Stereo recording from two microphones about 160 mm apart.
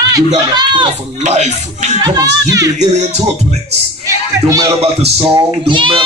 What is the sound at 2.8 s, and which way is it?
Music, 45° right (ahead or behind).